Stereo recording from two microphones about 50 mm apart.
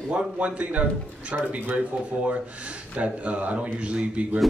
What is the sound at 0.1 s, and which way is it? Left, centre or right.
A man's voice, right.